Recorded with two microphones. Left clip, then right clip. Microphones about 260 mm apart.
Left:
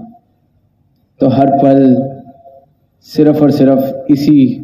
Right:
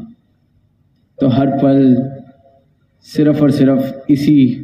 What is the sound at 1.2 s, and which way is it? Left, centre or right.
A man's voice, right.